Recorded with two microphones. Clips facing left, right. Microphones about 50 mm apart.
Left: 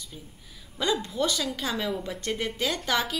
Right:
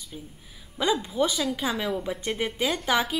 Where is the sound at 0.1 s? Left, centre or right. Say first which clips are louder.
Right 4 dB; centre.